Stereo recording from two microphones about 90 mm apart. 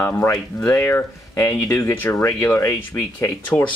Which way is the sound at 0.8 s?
25° left (ahead or behind).